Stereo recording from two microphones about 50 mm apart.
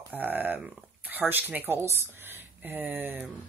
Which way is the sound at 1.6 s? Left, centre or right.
Right.